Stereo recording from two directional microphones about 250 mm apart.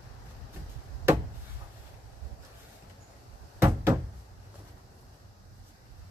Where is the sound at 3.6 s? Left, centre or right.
Centre.